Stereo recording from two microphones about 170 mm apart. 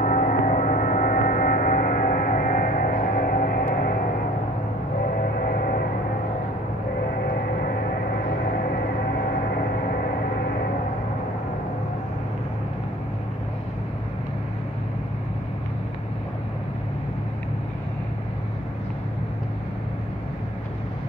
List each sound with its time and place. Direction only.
0.0 s gong: 50° left (ahead or behind)
3.7 s music: 60° left (ahead or behind)
5.1 s music: 55° left (ahead or behind)